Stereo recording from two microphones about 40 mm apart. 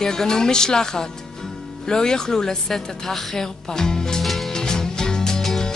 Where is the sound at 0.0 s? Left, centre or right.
Centre.